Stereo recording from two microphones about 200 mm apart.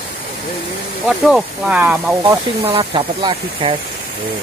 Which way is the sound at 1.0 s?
Centre (ahead or behind).